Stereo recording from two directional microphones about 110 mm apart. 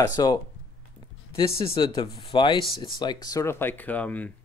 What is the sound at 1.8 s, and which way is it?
Speech, 45° left (ahead or behind).